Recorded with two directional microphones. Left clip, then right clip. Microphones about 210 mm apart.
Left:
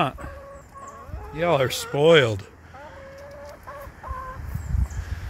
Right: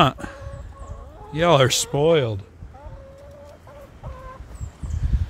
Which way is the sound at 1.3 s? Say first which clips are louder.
Right 5 dB; 45° right (ahead or behind).